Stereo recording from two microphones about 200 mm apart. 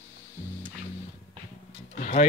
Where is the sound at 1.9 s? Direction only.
40° left (ahead or behind).